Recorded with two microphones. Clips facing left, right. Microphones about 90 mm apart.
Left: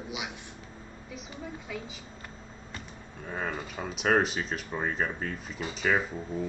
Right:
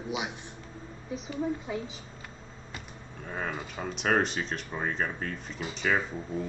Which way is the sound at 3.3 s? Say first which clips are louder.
Left 1 dB; centre (ahead or behind).